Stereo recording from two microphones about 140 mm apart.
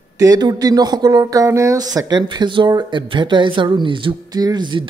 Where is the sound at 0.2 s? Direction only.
30° right (ahead or behind).